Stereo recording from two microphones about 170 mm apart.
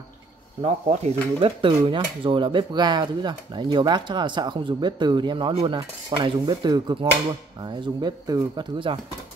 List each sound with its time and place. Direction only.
0.6 s speech: 40° right (ahead or behind)